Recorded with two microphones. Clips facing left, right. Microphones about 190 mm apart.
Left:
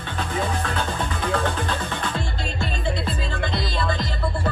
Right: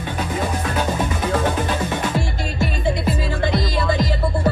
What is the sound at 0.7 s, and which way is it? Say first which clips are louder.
Music: right 5 dB; 20° right (ahead or behind).